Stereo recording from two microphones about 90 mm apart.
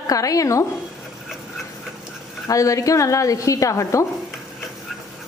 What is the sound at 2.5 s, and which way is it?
Speech, 40° left (ahead or behind).